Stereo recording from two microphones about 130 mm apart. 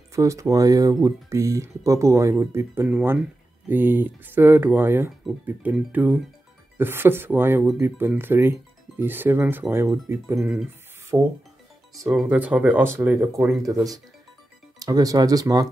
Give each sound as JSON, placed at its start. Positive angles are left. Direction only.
{"t": 0.1, "sound": "speech", "side_deg": -25}
{"t": 10.4, "sound": "speech", "side_deg": -5}
{"t": 11.1, "sound": "speech", "side_deg": -20}
{"t": 12.1, "sound": "speech", "side_deg": 0}
{"t": 14.8, "sound": "speech", "side_deg": -30}